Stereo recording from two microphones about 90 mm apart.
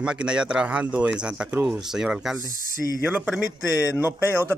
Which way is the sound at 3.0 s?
20° right (ahead or behind).